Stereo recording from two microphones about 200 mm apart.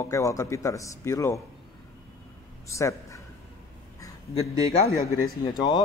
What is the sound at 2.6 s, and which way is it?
Speech, 15° left (ahead or behind).